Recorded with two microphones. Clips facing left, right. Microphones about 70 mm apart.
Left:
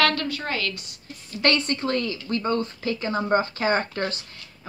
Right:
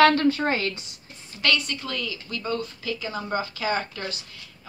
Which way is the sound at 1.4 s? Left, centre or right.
Left.